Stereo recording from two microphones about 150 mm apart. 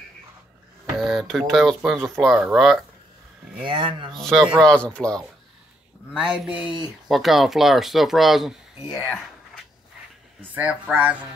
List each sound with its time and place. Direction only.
0.9 s speech: centre (ahead or behind)
3.6 s speech: 35° right (ahead or behind)
4.2 s speech: 5° left (ahead or behind)
6.1 s speech: 5° right (ahead or behind)
10.4 s speech: 10° right (ahead or behind)